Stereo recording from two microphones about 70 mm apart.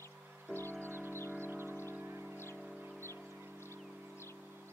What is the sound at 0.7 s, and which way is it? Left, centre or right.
Music, right.